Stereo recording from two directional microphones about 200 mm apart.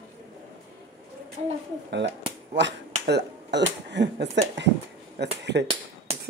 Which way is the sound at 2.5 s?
60° right (ahead or behind).